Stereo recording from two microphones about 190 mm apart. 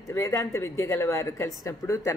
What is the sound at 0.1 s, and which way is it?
Speech, 15° left (ahead or behind).